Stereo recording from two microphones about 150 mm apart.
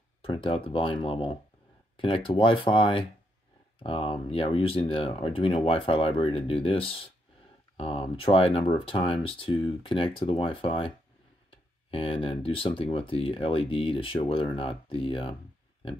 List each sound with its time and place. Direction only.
0.2 s speech: 35° left (ahead or behind)
11.9 s speech: 35° left (ahead or behind)